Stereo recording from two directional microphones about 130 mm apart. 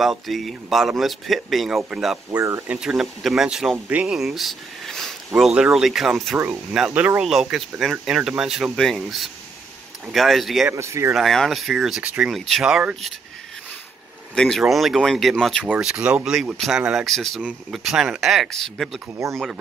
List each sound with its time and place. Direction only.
0.0 s speech: centre (ahead or behind)
2.3 s speech: 25° right (ahead or behind)
2.7 s speech: 5° right (ahead or behind)
6.3 s speech: 20° right (ahead or behind)
6.7 s speech: 5° right (ahead or behind)
10.7 s speech: 20° right (ahead or behind)
11.1 s speech: centre (ahead or behind)
14.3 s speech: 5° left (ahead or behind)
15.7 s speech: 5° right (ahead or behind)